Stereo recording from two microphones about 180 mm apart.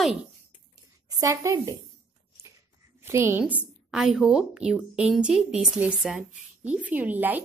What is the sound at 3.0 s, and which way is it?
A woman's voice, 15° right (ahead or behind).